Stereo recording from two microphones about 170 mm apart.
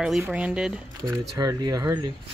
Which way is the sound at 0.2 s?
5° right (ahead or behind).